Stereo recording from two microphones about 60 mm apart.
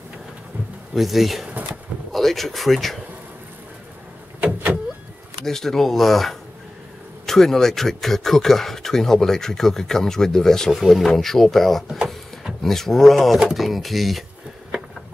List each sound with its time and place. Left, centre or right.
0.9 s speech: centre
4.4 s vehicle: right
5.4 s speech: centre